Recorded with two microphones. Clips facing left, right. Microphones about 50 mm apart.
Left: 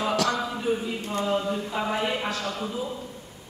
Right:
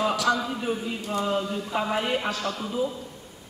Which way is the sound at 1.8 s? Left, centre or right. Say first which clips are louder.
Even; centre.